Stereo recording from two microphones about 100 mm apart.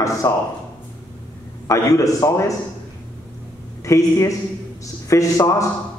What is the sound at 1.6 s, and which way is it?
Speech, 35° left (ahead or behind).